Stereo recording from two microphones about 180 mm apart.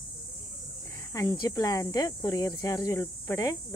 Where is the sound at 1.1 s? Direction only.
20° left (ahead or behind).